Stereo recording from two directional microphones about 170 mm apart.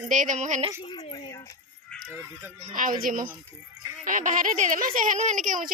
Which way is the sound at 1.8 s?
5° left (ahead or behind).